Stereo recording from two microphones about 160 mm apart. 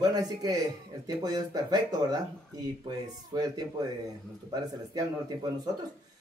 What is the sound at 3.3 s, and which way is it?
Speech, 25° right (ahead or behind).